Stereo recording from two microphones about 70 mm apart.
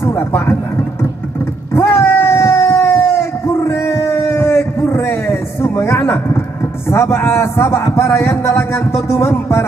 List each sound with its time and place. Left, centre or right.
0.0 s speech: left
1.7 s a sound: left
6.9 s speech: left